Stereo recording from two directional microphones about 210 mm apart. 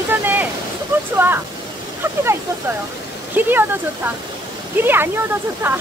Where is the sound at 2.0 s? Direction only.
10° right (ahead or behind).